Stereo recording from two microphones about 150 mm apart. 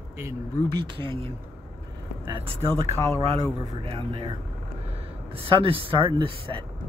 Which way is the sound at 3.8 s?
40° right (ahead or behind).